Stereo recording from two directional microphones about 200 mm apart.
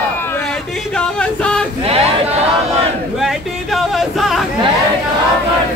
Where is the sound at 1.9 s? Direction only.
30° right (ahead or behind).